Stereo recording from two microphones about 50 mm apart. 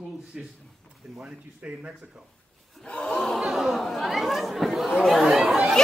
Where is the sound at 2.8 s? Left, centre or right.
Centre.